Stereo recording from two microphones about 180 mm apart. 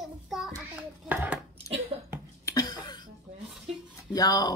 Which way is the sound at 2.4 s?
20° left (ahead or behind).